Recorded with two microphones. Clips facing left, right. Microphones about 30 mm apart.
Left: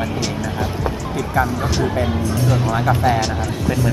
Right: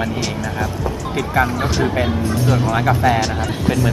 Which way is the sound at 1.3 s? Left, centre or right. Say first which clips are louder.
Right 1 dB; right.